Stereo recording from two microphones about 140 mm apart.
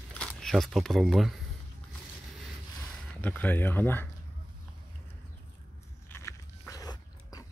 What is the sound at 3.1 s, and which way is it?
Speech, 10° left (ahead or behind).